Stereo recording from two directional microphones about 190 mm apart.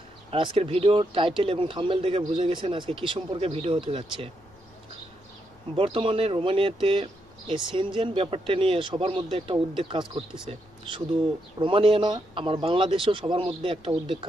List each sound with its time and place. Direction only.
0.3 s speech: 30° right (ahead or behind)
5.8 s speech: 30° right (ahead or behind)